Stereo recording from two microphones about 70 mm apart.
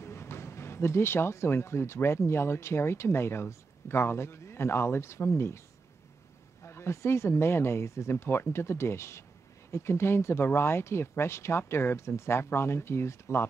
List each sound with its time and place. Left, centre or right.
0.0 s speech: left
6.6 s speech: left